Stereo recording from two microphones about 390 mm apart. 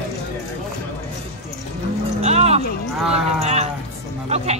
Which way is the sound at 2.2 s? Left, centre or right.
Centre.